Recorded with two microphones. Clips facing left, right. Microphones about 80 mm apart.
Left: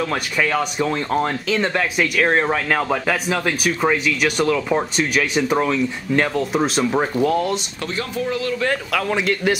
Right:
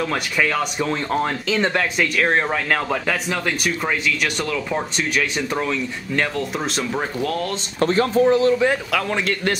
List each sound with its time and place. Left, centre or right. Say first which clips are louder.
0.0 s speech: even; centre
7.8 s speech: right 14 dB; right
8.9 s speech: left 1 dB; centre